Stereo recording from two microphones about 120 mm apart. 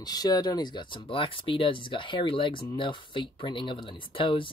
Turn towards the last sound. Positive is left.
turn(degrees=45)  # may be behind; listen again after turning